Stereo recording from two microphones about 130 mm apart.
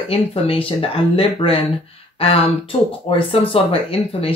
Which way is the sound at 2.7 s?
50° left (ahead or behind).